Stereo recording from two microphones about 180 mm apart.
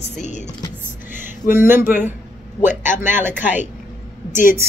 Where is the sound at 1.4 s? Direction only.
15° right (ahead or behind).